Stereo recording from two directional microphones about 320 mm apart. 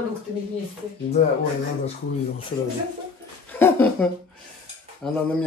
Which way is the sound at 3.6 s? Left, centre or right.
Centre.